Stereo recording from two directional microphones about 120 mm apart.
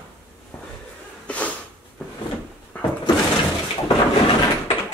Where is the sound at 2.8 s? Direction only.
15° left (ahead or behind).